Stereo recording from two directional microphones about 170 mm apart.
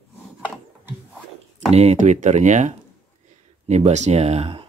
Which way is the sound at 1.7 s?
40° right (ahead or behind).